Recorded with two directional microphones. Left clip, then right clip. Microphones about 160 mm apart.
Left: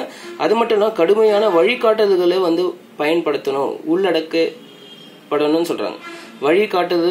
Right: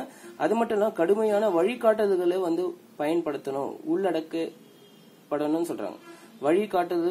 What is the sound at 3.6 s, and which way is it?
Speech, centre (ahead or behind).